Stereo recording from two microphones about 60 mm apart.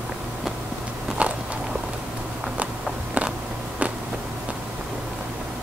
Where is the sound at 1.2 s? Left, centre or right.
Right.